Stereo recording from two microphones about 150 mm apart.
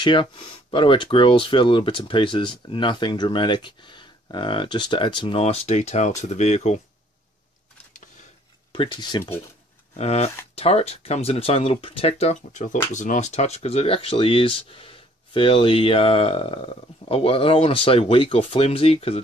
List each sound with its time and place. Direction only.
0.0 s speech: 35° left (ahead or behind); by 6.8 s 50° left (ahead or behind)
8.7 s speech: 30° left (ahead or behind)
9.9 s speech: 45° left (ahead or behind)